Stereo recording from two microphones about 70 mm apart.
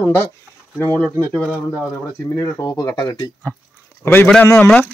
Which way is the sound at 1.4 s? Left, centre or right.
Centre.